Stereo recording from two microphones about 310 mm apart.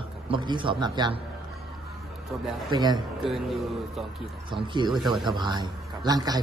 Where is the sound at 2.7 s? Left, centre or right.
Centre.